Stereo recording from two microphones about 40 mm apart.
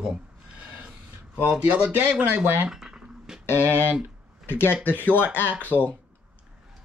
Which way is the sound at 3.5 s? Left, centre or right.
Left.